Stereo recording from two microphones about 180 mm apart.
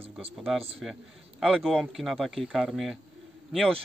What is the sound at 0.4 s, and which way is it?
Speech, centre (ahead or behind).